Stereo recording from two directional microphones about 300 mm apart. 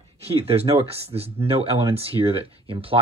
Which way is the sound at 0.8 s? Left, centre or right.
Centre.